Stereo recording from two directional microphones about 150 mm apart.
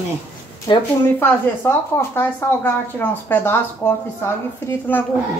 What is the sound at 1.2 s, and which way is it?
Speech, 15° left (ahead or behind).